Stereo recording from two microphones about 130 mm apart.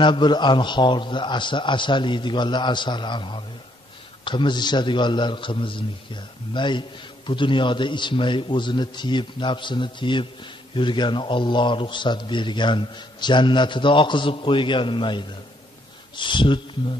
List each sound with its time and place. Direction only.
0.0 s a man's voice: 35° left (ahead or behind)